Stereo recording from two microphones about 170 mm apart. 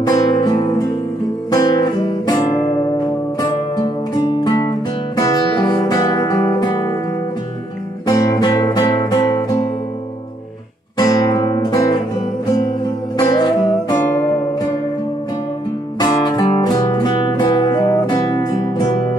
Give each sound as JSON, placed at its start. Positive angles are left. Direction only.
{"t": 0.0, "sound": "music", "side_deg": 25}
{"t": 8.1, "sound": "music", "side_deg": 20}
{"t": 11.0, "sound": "music", "side_deg": 20}
{"t": 13.2, "sound": "music", "side_deg": 25}
{"t": 16.0, "sound": "music", "side_deg": 25}